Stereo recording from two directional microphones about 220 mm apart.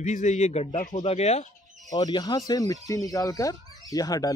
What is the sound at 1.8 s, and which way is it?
Speech, 15° left (ahead or behind).